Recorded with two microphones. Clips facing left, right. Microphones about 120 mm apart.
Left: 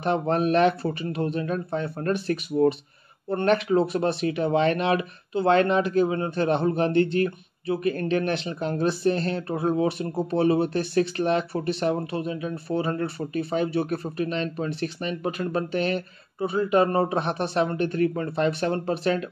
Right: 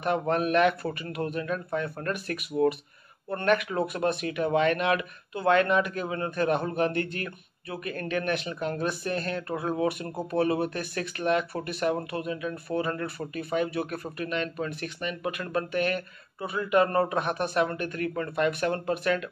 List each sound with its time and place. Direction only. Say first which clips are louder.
0.0 s speech: left 3 dB; 30° left (ahead or behind)